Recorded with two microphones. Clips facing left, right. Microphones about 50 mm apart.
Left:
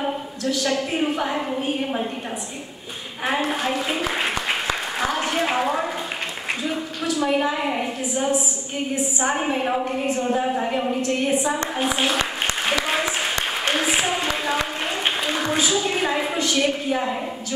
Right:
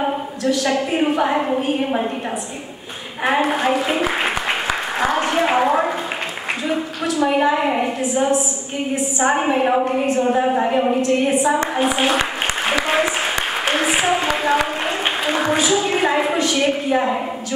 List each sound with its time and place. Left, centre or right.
0.4 s a woman's voice: centre
3.3 s a woman's voice: centre
8.0 s a woman's voice: centre
9.3 s a woman's voice: centre
10.0 s a woman's voice: centre
10.4 s a woman's voice: centre
11.0 s a woman's voice: centre
11.5 s a woman's voice: centre
12.2 s applause: centre
13.7 s a sound: centre
15.6 s a woman's voice: centre